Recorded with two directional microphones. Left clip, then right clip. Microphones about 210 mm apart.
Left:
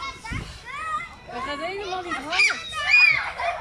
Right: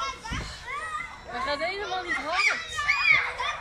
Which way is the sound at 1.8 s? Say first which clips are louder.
Even; 55° left (ahead or behind).